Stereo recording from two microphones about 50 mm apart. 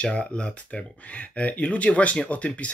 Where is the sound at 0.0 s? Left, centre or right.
Left.